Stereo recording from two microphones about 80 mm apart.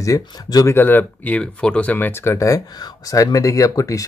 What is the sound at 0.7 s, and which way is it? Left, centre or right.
Speech, left.